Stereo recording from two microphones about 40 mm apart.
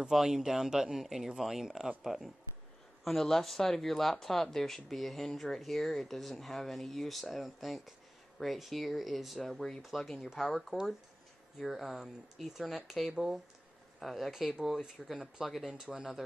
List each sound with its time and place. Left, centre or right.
0.1 s speech: centre
3.0 s speech: centre
9.8 s speech: centre
14.3 s speech: centre